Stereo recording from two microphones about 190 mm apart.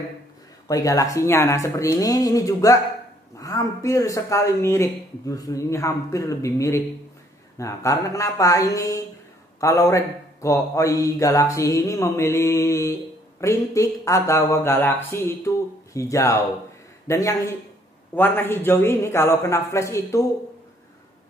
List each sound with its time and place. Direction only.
0.7 s a man's voice: 15° left (ahead or behind)